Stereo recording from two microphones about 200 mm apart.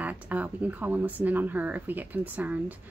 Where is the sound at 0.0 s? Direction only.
5° right (ahead or behind).